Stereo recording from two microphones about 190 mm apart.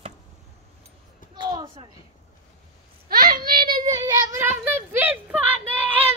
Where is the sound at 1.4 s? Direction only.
20° right (ahead or behind).